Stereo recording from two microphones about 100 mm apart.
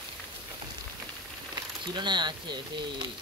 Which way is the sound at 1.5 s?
50° right (ahead or behind).